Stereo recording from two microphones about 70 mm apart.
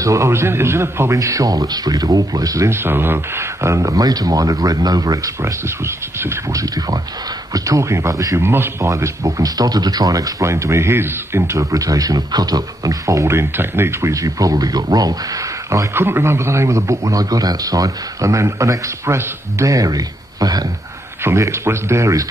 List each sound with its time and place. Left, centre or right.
0.0 s speech: right
2.7 s speech: right
5.4 s speech: right
6.5 s speech: right
8.4 s speech: right
14.1 s speech: right
15.9 s speech: right
19.6 s speech: right
21.2 s speech: right